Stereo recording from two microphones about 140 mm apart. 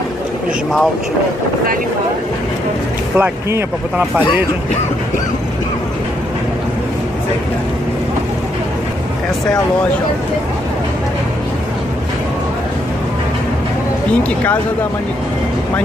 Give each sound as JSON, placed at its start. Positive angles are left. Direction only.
{"t": 3.2, "sound": "speech", "side_deg": -15}